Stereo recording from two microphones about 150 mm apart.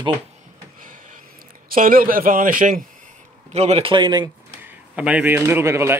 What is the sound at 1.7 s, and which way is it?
A man's voice, 70° right (ahead or behind).